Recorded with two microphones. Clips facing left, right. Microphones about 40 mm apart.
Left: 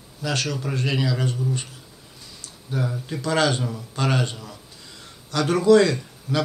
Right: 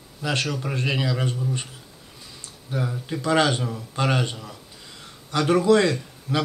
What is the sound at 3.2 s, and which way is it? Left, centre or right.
A man's voice, centre.